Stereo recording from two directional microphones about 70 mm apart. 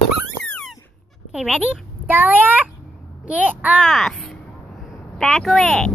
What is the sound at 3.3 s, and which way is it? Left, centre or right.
Speech, centre.